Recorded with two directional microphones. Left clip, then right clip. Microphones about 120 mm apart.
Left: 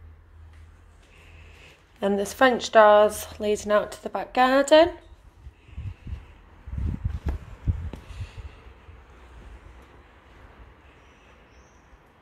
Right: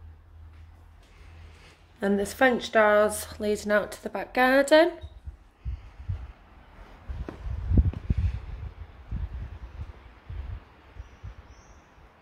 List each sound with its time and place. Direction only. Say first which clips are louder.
2.0 s a woman's voice: left 3 dB; 15° right (ahead or behind)